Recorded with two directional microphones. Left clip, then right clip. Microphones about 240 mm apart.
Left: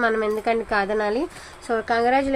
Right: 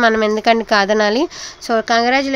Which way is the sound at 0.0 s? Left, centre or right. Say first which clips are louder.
Right 8 dB; right.